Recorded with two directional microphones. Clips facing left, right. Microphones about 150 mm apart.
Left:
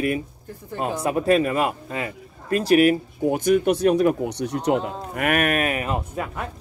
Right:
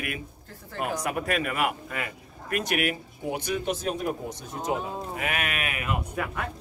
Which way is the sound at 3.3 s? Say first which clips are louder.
Left 10 dB; 50° left (ahead or behind).